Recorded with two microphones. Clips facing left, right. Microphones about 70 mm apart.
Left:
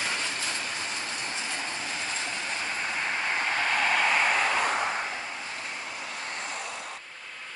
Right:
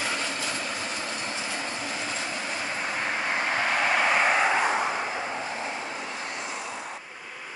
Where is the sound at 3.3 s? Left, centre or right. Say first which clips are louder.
Right 2 dB; right.